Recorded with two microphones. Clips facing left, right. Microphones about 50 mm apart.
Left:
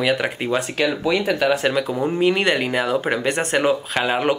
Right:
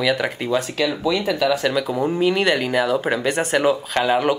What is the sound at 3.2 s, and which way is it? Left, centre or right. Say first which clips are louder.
Speech: even; centre.